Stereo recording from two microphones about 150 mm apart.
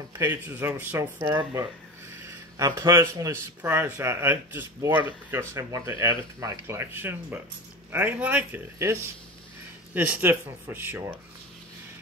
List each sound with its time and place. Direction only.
0.2 s speech: 15° right (ahead or behind)